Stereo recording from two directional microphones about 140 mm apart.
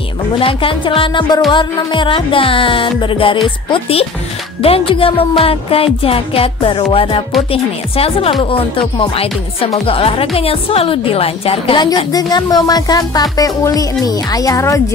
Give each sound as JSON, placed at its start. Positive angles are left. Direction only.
{"t": 0.4, "sound": "music", "side_deg": 40}
{"t": 7.5, "sound": "a woman's voice", "side_deg": 45}
{"t": 8.4, "sound": "music", "side_deg": 40}
{"t": 12.1, "sound": "speech", "side_deg": 30}